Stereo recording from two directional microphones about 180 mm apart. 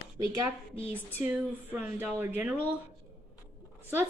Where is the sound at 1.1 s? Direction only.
10° right (ahead or behind).